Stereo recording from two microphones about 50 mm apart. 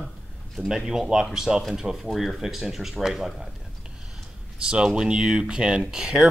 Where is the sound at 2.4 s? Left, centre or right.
Centre.